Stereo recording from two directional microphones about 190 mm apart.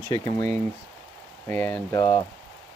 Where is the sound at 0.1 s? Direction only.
20° left (ahead or behind).